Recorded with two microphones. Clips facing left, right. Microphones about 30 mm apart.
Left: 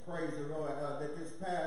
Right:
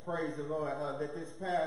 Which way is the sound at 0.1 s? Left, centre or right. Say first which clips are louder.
Right 3 dB; centre.